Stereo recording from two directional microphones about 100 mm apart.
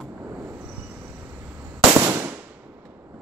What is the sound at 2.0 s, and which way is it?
Firecracker, 25° right (ahead or behind).